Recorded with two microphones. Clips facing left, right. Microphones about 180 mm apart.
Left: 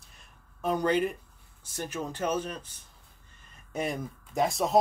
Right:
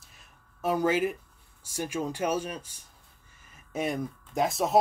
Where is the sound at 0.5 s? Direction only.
5° right (ahead or behind).